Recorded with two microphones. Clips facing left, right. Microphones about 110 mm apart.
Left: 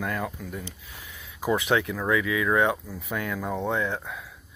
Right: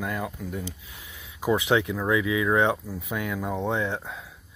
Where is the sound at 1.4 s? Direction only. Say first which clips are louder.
Right 1 dB; 20° right (ahead or behind).